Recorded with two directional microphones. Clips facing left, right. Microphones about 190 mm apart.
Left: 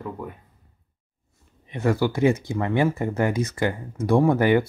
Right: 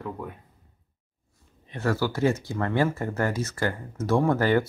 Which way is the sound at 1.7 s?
15° left (ahead or behind).